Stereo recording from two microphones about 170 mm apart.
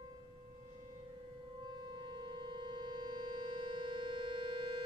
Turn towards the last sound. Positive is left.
turn(degrees=-30)  # may be behind; listen again after turning